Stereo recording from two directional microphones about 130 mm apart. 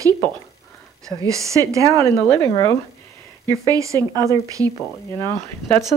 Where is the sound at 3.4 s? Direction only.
25° right (ahead or behind).